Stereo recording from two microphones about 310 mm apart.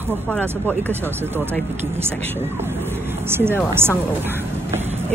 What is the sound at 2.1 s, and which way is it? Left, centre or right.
Speech, centre.